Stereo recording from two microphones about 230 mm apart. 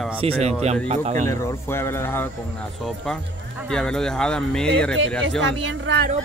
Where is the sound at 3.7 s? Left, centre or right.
Centre.